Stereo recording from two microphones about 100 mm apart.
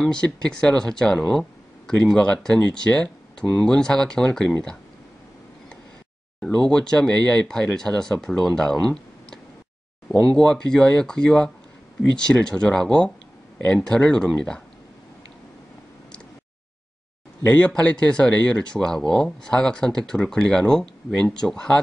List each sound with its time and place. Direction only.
0.0 s speech: 5° left (ahead or behind)
6.4 s speech: 10° left (ahead or behind)
17.4 s speech: 15° left (ahead or behind)